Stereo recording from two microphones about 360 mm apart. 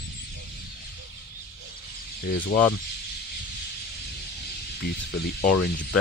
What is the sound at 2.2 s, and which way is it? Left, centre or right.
Speech, left.